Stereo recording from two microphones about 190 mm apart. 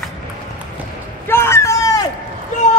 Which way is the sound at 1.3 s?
15° left (ahead or behind).